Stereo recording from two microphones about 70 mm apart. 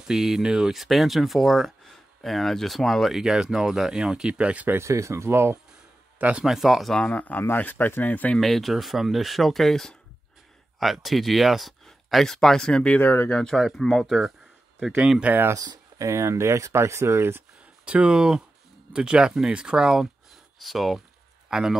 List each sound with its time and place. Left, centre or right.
0.0 s speech: centre
4.7 s speech: right
6.1 s speech: right
6.4 s speech: centre
7.1 s speech: left
8.4 s speech: centre
13.0 s speech: left
13.3 s speech: centre
15.5 s speech: right
16.1 s speech: right
17.8 s speech: centre